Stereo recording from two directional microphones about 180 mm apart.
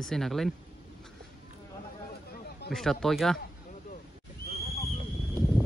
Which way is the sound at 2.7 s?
Centre (ahead or behind).